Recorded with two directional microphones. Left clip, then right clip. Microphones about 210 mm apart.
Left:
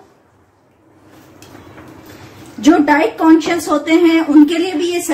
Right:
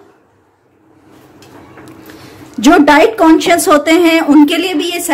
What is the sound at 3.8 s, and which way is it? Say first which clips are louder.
Speech: right 3 dB; 45° right (ahead or behind).